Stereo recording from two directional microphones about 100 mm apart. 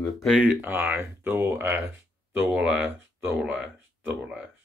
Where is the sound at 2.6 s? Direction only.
10° right (ahead or behind).